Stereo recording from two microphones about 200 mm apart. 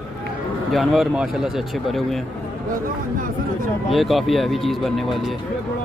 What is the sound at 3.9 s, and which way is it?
Speech, centre (ahead or behind).